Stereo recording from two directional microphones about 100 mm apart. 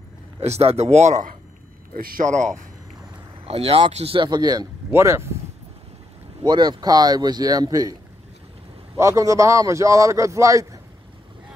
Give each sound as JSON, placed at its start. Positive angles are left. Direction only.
{"t": 0.4, "sound": "speech", "side_deg": -90}
{"t": 3.4, "sound": "speech", "side_deg": -85}
{"t": 4.2, "sound": "speech", "side_deg": -45}
{"t": 4.9, "sound": "speech", "side_deg": -25}
{"t": 6.4, "sound": "a man's voice", "side_deg": -45}
{"t": 8.9, "sound": "a man's voice", "side_deg": -30}